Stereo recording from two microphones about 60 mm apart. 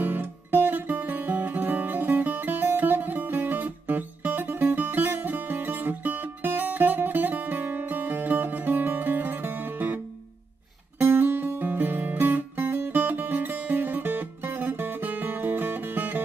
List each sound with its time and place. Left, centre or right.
0.0 s music: right
11.0 s guitar: right